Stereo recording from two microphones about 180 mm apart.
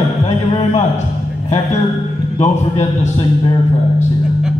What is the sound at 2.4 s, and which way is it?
Speech, 40° left (ahead or behind).